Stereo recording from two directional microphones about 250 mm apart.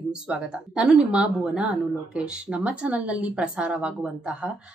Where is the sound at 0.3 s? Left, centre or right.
Centre.